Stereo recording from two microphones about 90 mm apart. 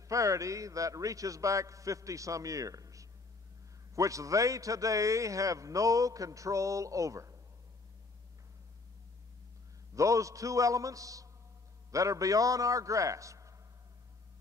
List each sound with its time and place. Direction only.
0.0 s a man's voice: 35° right (ahead or behind)
9.9 s a man's voice: 35° right (ahead or behind)